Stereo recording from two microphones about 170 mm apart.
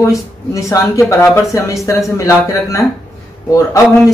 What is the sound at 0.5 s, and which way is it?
A man's voice, 20° left (ahead or behind).